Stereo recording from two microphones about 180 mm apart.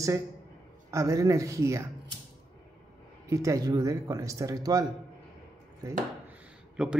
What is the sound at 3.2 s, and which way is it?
Speech, 20° right (ahead or behind).